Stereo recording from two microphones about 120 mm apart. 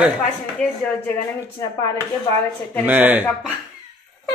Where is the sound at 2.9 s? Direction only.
15° right (ahead or behind).